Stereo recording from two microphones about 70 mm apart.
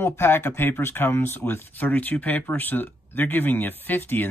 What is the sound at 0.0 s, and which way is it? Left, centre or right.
Speech, left.